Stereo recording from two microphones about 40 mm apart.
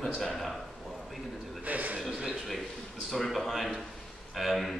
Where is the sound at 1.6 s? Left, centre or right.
Right.